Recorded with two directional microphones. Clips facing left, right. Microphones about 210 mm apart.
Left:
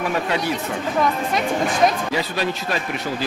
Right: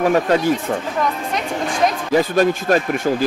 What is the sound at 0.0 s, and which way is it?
Speech, 45° right (ahead or behind).